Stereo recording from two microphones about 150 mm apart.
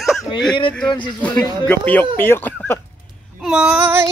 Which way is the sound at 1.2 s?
10° left (ahead or behind).